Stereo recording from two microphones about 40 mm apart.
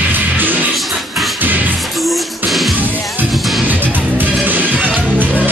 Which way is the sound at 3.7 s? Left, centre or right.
Right.